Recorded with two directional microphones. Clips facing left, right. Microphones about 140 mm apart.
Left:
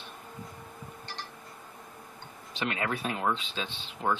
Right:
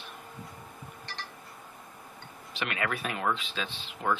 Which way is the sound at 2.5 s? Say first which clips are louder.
Left 1 dB; 30° left (ahead or behind).